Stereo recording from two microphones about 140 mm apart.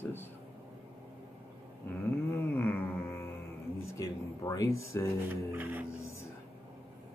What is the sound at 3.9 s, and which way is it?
Speech, 25° left (ahead or behind).